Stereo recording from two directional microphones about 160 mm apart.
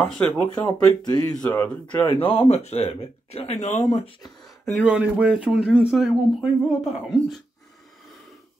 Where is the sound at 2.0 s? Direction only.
35° left (ahead or behind).